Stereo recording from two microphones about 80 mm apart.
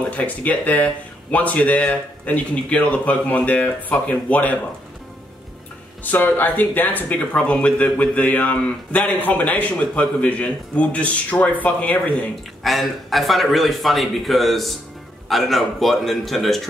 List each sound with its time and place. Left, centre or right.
0.1 s speech: centre
6.0 s speech: left
12.6 s a man's voice: centre